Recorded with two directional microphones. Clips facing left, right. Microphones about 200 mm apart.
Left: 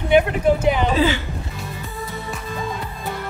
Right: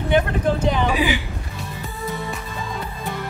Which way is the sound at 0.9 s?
15° right (ahead or behind).